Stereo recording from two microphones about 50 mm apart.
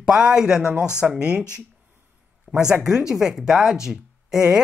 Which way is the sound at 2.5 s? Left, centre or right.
Centre.